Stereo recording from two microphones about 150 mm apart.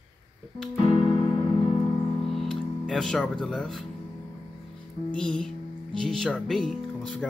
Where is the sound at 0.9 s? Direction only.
40° left (ahead or behind).